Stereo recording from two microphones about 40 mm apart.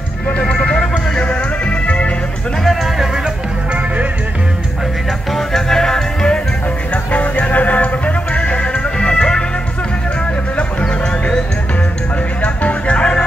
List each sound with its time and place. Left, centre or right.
0.4 s music: left
1.9 s music: left
5.3 s music: centre
7.1 s music: left
8.4 s music: left
10.8 s music: left
12.6 s music: left